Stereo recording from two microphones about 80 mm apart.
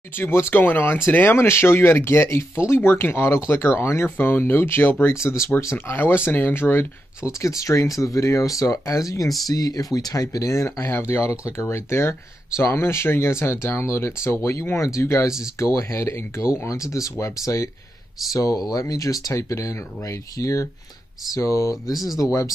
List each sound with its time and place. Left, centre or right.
0.1 s speech: left
5.2 s speech: left
7.4 s speech: left
10.9 s speech: left